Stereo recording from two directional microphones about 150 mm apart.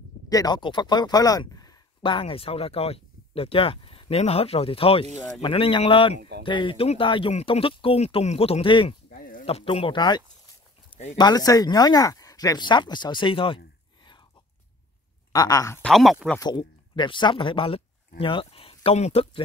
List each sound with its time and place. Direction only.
0.3 s speech: 25° left (ahead or behind)
9.1 s a sound: 65° left (ahead or behind)
9.5 s speech: 40° left (ahead or behind)
15.3 s speech: 25° left (ahead or behind)
15.8 s speech: centre (ahead or behind)
16.3 s speech: 30° left (ahead or behind)